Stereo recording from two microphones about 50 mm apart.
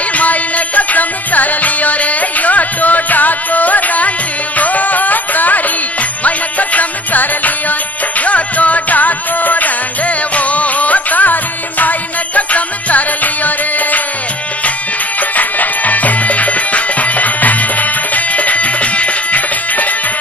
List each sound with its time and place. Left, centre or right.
0.1 s music: left
12.4 s music: left
15.3 s music: left